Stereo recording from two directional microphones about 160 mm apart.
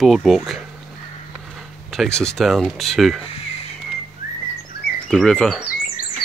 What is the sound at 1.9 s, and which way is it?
Speech, 5° left (ahead or behind).